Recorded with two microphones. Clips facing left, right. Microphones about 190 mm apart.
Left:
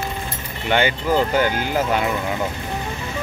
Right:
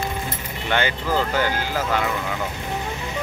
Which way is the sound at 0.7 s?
15° left (ahead or behind).